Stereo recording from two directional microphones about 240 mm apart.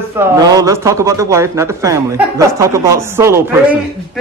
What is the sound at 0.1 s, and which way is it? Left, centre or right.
A man's voice, centre.